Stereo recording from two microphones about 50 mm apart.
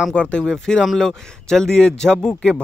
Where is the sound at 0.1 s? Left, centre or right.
Left.